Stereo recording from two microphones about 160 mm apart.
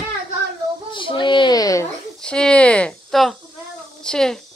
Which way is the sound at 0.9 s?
30° left (ahead or behind).